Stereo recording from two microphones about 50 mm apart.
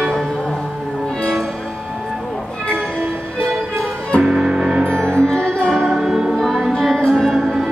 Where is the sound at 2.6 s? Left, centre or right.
Right.